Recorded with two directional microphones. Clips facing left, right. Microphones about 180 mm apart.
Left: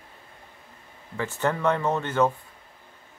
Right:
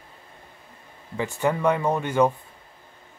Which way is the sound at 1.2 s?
15° right (ahead or behind).